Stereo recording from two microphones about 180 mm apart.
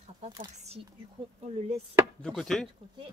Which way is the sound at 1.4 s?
35° right (ahead or behind).